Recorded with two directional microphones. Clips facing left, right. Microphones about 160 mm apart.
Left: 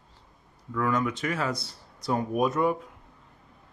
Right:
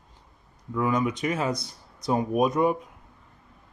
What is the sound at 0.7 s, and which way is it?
Speech, 15° right (ahead or behind).